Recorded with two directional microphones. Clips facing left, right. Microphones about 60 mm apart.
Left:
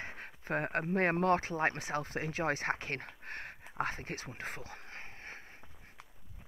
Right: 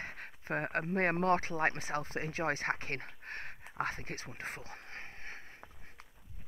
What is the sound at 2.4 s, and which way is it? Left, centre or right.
Speech, left.